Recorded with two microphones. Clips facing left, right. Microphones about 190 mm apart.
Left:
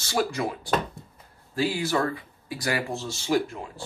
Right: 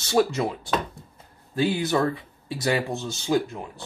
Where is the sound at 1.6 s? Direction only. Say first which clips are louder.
Right 2 dB; 20° right (ahead or behind).